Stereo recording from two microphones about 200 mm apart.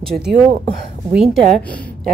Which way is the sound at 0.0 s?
Centre (ahead or behind).